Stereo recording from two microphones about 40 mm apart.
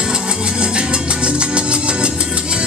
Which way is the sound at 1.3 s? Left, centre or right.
Right.